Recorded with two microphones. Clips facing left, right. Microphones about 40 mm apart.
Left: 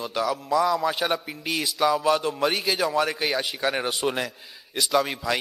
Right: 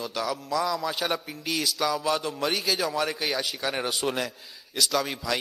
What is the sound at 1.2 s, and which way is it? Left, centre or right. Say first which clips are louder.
A man's voice: left 1 dB; centre.